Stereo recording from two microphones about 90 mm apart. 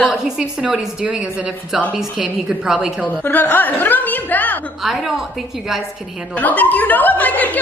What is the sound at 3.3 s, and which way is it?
Speech, 20° left (ahead or behind).